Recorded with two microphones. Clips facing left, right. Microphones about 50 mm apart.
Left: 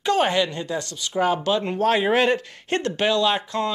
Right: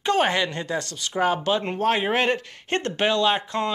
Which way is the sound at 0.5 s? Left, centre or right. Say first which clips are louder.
Even; right.